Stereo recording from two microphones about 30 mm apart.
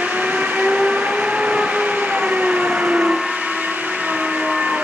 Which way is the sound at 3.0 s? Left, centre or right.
Right.